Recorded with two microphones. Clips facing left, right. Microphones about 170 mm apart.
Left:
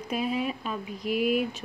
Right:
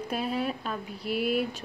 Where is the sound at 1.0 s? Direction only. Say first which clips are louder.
Left 2 dB; 35° right (ahead or behind).